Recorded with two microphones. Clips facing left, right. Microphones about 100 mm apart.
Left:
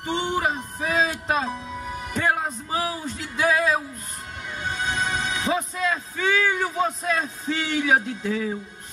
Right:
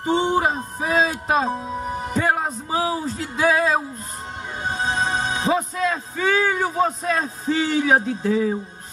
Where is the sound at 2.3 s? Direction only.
35° right (ahead or behind).